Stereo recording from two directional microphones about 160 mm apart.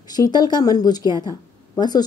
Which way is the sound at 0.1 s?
25° left (ahead or behind).